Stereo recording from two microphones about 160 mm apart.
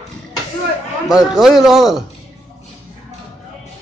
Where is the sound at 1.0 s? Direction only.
5° right (ahead or behind).